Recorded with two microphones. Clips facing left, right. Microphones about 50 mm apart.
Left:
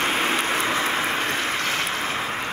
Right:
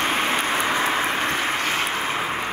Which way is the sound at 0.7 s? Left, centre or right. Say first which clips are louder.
Right 1 dB; right.